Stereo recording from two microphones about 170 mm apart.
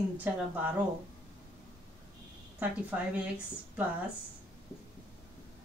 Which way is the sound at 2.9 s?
10° right (ahead or behind).